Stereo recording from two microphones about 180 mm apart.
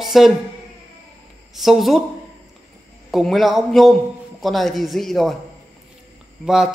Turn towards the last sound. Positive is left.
turn(degrees=-5)  # may be behind; listen again after turning